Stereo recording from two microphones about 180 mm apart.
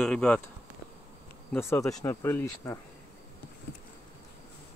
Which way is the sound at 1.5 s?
15° left (ahead or behind).